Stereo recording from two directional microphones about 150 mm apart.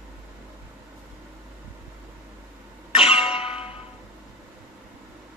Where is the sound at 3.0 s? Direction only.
40° left (ahead or behind).